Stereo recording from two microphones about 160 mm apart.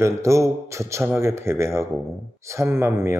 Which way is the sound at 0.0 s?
20° right (ahead or behind).